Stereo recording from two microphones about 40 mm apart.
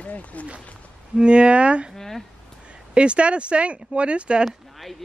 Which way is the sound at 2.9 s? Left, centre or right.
Right.